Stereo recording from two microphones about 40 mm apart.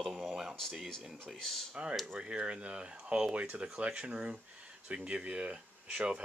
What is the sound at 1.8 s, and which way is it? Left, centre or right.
Speech, right.